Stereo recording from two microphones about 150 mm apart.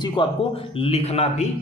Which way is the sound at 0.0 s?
30° left (ahead or behind).